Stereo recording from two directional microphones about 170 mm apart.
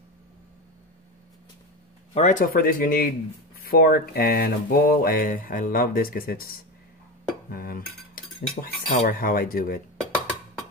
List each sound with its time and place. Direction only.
2.1 s speech: 45° left (ahead or behind)